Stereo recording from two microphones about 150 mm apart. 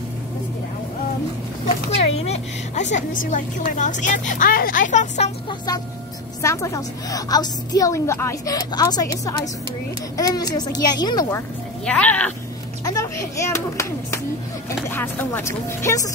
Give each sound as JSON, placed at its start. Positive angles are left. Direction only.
{"t": 2.0, "sound": "a woman's voice", "side_deg": 45}
{"t": 6.4, "sound": "a woman's voice", "side_deg": 20}
{"t": 11.8, "sound": "speech", "side_deg": 10}
{"t": 12.8, "sound": "a child's voice", "side_deg": 20}